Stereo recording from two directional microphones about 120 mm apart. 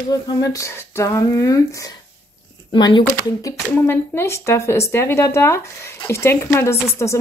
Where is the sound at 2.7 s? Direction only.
40° left (ahead or behind).